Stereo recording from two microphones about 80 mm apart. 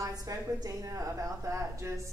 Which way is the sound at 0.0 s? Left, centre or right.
Right.